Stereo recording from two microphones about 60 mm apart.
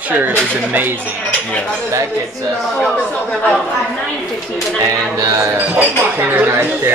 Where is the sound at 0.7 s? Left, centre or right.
Right.